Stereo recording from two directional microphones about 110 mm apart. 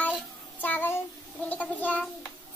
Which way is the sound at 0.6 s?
15° left (ahead or behind).